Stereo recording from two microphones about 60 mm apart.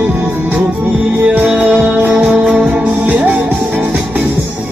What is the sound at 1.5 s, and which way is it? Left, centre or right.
Music, centre.